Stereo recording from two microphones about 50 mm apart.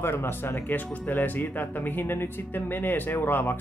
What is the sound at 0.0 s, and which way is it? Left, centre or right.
Speech, left.